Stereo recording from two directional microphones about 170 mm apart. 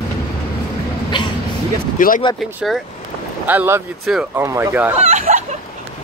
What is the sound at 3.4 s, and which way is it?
Speech, 10° right (ahead or behind).